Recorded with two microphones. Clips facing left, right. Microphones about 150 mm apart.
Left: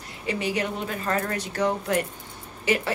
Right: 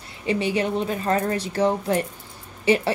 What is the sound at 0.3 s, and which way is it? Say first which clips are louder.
A woman's voice: right 4 dB; 25° right (ahead or behind).